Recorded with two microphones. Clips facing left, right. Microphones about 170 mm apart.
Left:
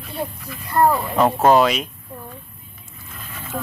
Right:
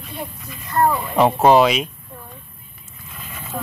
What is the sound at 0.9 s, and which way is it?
Speech, centre (ahead or behind).